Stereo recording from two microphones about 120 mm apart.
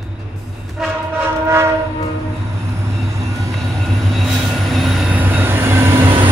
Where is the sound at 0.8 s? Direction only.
5° right (ahead or behind).